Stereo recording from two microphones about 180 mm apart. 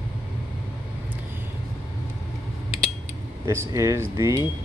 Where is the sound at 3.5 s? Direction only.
15° right (ahead or behind).